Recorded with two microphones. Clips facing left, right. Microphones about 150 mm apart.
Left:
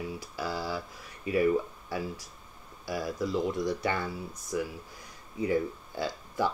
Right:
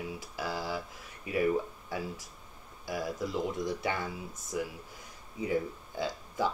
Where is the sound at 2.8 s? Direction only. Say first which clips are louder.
Left 2 dB; 20° right (ahead or behind).